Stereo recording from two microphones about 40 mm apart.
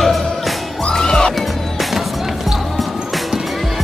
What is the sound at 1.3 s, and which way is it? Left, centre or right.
Music, centre.